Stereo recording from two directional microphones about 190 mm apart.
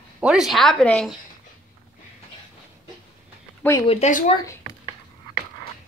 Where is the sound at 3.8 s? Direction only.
30° left (ahead or behind).